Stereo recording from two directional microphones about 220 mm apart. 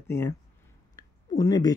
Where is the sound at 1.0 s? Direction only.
15° left (ahead or behind).